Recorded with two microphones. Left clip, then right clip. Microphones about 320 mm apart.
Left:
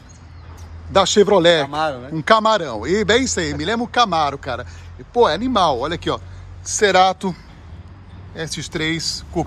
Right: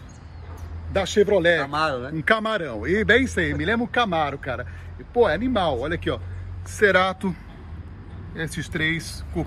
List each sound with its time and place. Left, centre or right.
0.9 s speech: left
8.4 s speech: centre